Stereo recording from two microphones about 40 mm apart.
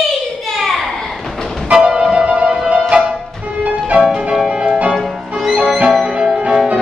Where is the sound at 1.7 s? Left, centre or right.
Centre.